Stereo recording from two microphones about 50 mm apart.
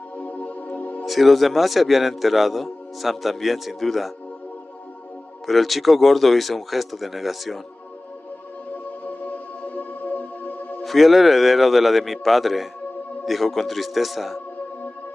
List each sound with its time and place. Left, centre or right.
0.2 s music: left
1.0 s a man's voice: centre
5.5 s a man's voice: centre
9.0 s music: left
10.8 s a man's voice: centre